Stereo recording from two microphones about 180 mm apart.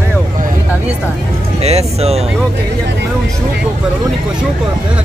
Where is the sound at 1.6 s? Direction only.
35° right (ahead or behind).